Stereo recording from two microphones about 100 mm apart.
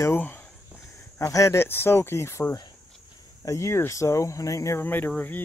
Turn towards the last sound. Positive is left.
turn(degrees=20)  # may be behind; listen again after turning